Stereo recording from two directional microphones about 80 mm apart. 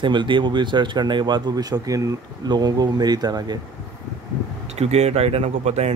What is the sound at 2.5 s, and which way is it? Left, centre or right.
Speech, right.